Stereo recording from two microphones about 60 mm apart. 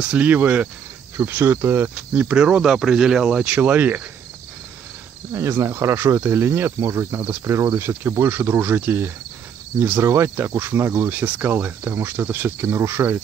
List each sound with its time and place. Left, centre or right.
0.1 s cricket: right
1.1 s speech: right
2.1 s speech: centre
3.4 s cricket: right
5.3 s speech: right
8.2 s speech: right
12.6 s speech: right